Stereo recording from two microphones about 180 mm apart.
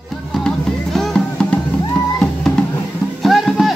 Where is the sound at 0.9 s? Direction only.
5° left (ahead or behind).